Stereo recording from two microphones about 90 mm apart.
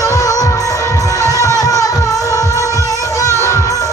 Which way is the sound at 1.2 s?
35° right (ahead or behind).